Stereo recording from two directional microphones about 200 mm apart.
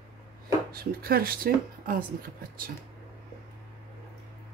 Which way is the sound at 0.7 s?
50° right (ahead or behind).